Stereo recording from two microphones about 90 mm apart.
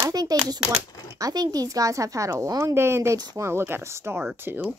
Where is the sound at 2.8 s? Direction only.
30° right (ahead or behind).